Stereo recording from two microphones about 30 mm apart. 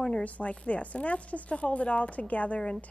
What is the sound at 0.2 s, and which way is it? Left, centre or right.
A woman's voice, left.